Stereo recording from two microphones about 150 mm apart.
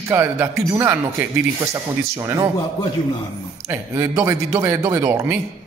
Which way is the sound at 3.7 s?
15° right (ahead or behind).